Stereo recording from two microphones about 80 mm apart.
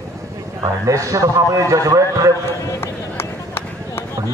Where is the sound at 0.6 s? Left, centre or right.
Right.